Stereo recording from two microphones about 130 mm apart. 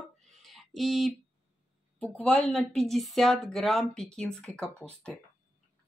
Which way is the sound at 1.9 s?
10° left (ahead or behind).